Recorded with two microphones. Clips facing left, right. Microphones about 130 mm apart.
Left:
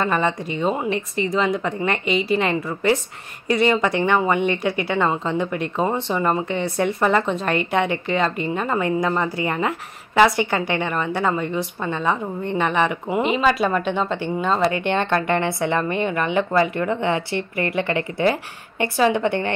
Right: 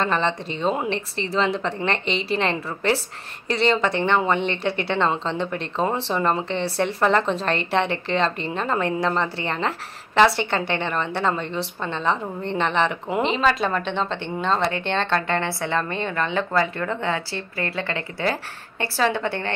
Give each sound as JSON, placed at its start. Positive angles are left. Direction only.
{"t": 0.0, "sound": "speech", "side_deg": 10}
{"t": 7.0, "sound": "a woman's voice", "side_deg": 5}